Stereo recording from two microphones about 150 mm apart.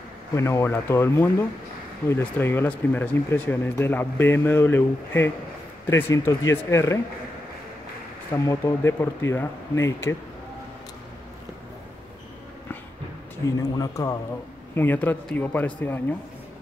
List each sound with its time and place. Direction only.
0.4 s speech: 15° left (ahead or behind)
8.5 s speech: 20° left (ahead or behind)
13.6 s speech: 25° left (ahead or behind)
14.8 s speech: 10° left (ahead or behind)